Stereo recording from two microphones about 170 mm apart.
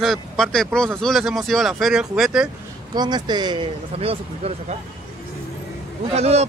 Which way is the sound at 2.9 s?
25° right (ahead or behind).